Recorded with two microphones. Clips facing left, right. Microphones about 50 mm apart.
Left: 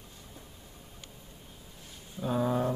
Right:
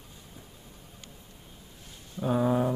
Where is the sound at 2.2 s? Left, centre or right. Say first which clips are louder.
Right 3 dB; centre.